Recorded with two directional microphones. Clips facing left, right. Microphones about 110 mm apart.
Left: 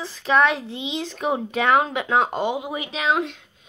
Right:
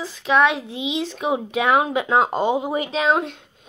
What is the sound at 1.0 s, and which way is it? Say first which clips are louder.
Speech: right 1 dB; 5° right (ahead or behind).